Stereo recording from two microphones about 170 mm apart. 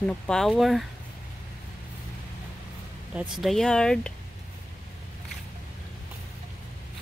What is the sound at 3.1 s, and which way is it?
Speech, 5° right (ahead or behind).